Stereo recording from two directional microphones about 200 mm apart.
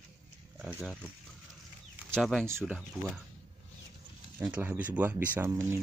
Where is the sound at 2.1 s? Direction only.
Centre (ahead or behind).